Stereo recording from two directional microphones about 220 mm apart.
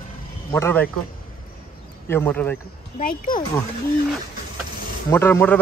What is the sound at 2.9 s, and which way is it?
Speech, 40° left (ahead or behind).